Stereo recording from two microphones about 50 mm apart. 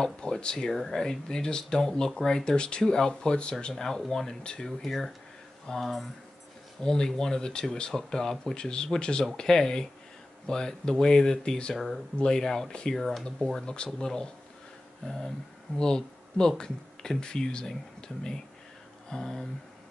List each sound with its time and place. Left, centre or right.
0.0 s speech: centre
6.8 s speech: centre
11.7 s speech: centre
12.2 s speech: centre